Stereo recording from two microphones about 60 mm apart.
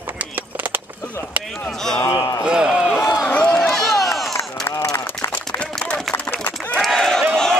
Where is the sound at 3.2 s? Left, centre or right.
Left.